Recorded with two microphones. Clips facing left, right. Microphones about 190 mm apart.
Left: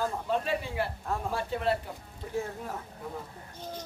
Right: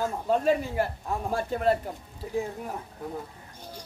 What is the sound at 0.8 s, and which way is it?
Speech, 45° right (ahead or behind).